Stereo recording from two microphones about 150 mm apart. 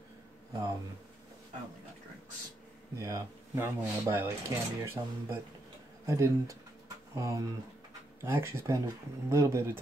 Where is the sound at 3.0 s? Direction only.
20° right (ahead or behind).